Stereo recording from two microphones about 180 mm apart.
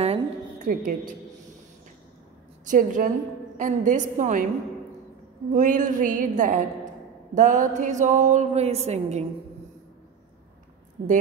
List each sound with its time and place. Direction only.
0.0 s music: 35° right (ahead or behind)
0.7 s a sound: 50° right (ahead or behind)
2.7 s a woman's voice: 50° right (ahead or behind)
5.5 s a woman's voice: 45° right (ahead or behind)
7.3 s music: 45° right (ahead or behind)